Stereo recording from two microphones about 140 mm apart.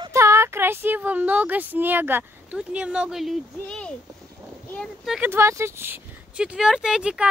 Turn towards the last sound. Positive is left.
turn(degrees=-5)  # may be behind; listen again after turning